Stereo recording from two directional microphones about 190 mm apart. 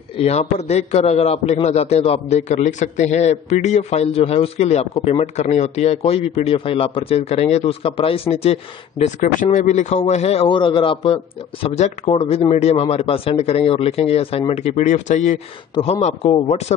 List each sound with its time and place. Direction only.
0.2 s a man's voice: 35° left (ahead or behind)